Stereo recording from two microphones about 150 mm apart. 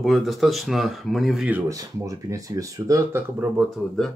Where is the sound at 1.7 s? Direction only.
20° right (ahead or behind).